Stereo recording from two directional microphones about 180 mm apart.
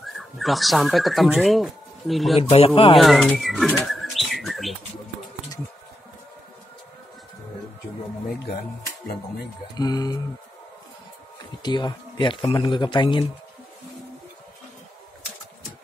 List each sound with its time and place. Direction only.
0.0 s speech: centre (ahead or behind)
2.3 s speech: 30° left (ahead or behind)
3.0 s bird: centre (ahead or behind)
9.8 s speech: 20° left (ahead or behind)
11.6 s speech: 25° left (ahead or behind)